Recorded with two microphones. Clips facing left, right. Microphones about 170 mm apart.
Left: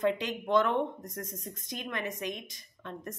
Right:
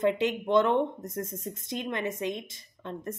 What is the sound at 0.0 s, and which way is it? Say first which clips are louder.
Speech: right 4 dB; 25° right (ahead or behind).